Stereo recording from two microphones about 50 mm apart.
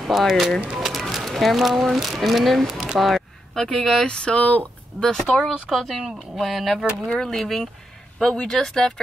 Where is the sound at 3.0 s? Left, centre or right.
Centre.